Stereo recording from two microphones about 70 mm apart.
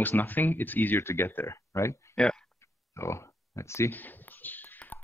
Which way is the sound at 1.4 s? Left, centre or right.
Left.